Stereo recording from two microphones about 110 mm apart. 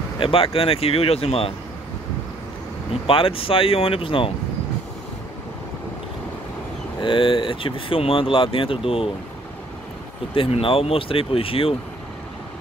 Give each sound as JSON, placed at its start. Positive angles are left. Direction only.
{"t": 0.2, "sound": "speech", "side_deg": 55}
{"t": 2.9, "sound": "speech", "side_deg": 55}
{"t": 7.0, "sound": "speech", "side_deg": 50}
{"t": 10.3, "sound": "speech", "side_deg": 55}